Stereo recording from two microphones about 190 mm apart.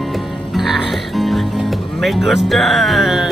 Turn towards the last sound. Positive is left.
turn(degrees=0)  # may be behind; listen again after turning